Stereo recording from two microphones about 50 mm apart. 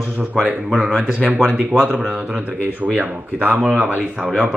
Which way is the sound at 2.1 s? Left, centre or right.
Right.